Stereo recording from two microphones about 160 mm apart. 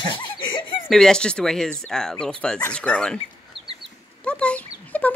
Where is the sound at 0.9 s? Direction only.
5° left (ahead or behind).